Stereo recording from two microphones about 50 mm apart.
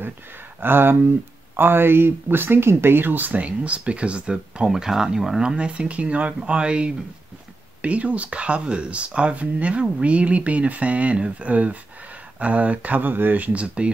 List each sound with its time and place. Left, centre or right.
0.6 s speech: right
4.6 s speech: centre
5.4 s speech: centre